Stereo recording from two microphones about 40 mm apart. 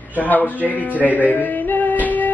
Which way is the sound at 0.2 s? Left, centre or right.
Left.